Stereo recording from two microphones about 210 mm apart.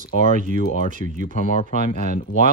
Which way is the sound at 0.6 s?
40° left (ahead or behind).